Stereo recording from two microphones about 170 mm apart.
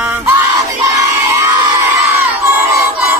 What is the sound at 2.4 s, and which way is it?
Crowd, 15° right (ahead or behind).